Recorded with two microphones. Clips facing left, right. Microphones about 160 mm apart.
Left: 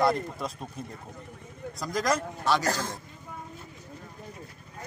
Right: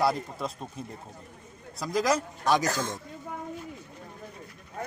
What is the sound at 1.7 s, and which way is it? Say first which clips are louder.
Speech: right 2 dB; centre (ahead or behind).